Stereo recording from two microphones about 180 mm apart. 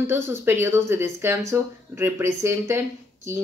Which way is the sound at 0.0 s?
15° right (ahead or behind).